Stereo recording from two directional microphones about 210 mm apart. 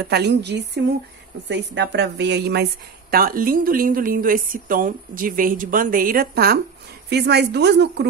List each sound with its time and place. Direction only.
0.1 s a woman's voice: 55° right (ahead or behind)